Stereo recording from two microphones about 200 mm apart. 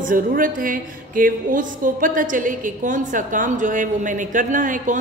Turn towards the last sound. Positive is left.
turn(degrees=-40)  # may be behind; listen again after turning